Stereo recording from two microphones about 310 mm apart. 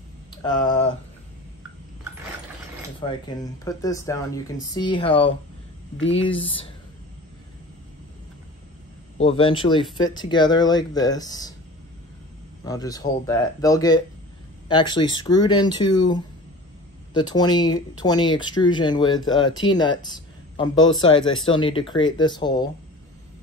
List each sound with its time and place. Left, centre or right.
0.4 s speech: centre
3.0 s speech: centre
6.4 s speech: centre
9.2 s speech: centre
12.6 s speech: centre